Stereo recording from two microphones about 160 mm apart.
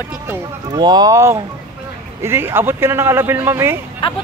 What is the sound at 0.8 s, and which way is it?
A man's voice, 25° right (ahead or behind).